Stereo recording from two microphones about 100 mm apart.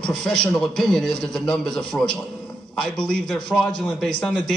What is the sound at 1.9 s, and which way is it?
Speech, 20° left (ahead or behind).